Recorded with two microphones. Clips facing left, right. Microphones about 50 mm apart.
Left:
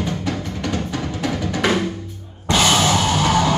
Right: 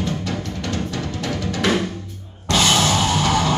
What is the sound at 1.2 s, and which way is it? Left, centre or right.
Drum, centre.